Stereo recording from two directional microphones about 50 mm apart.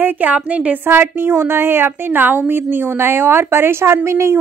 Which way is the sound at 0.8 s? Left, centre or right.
Right.